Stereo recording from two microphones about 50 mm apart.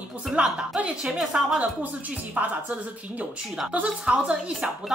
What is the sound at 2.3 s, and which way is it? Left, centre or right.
Speech, right.